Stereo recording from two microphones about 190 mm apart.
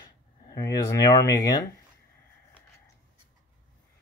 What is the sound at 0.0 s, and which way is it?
Speech, 20° left (ahead or behind).